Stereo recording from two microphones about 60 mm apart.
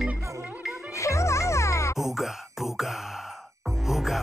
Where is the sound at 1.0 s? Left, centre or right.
Left.